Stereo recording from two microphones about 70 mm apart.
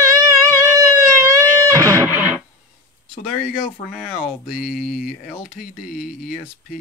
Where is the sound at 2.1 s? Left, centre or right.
Right.